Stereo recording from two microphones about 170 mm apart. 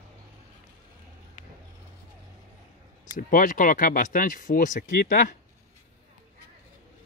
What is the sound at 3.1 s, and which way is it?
Speech, 55° left (ahead or behind).